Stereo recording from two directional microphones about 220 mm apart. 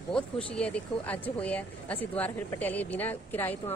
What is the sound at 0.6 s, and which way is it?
Speech, 5° left (ahead or behind).